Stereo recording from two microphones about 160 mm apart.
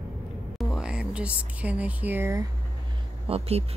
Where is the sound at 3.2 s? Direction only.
40° right (ahead or behind).